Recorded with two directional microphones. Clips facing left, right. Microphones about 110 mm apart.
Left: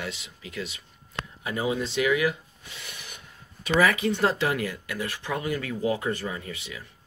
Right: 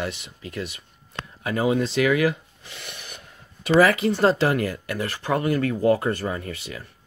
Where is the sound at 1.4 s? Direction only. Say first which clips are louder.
Right 6 dB; 60° right (ahead or behind).